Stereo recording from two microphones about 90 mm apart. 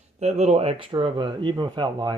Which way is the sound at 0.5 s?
85° right.